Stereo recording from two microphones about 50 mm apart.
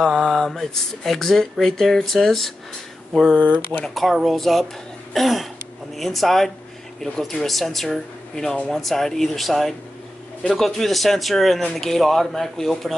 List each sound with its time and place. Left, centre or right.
0.0 s speech: centre
3.3 s speech: right
3.9 s speech: centre
5.1 s throat clearing: centre
5.9 s speech: centre